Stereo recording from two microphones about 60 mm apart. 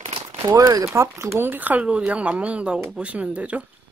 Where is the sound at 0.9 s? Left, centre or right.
Right.